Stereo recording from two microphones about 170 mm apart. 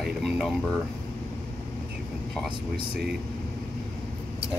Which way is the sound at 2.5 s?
30° right (ahead or behind).